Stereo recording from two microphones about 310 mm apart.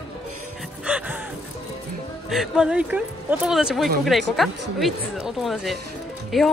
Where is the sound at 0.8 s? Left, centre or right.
Centre.